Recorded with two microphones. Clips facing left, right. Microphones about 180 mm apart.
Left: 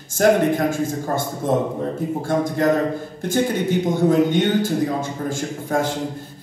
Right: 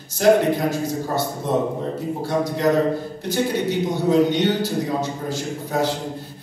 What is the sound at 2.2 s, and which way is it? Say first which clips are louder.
Speech: left 1 dB; 50° left (ahead or behind).